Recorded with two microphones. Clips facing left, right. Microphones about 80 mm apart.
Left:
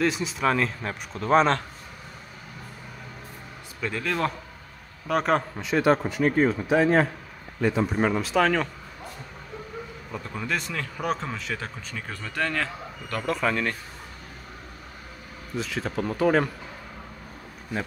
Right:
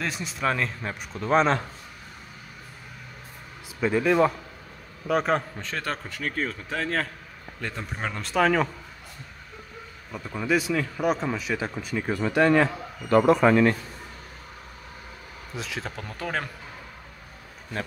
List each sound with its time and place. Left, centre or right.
0.0 s a man's voice: centre
3.8 s speech: centre
5.0 s a man's voice: centre
5.7 s a man's voice: centre
7.6 s a man's voice: centre
10.1 s speech: centre; by 13.7 s right
15.5 s a man's voice: centre